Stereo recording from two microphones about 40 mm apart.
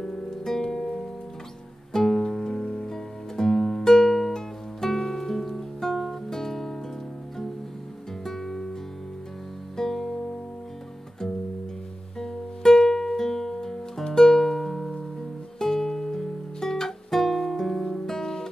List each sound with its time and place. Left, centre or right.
0.0 s music: centre
2.6 s music: left
2.9 s music: centre
8.2 s music: centre
9.8 s music: centre
12.2 s music: centre
17.8 s guitar: centre